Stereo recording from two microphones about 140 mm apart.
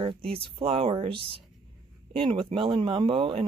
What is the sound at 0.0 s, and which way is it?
Speech, 40° right (ahead or behind).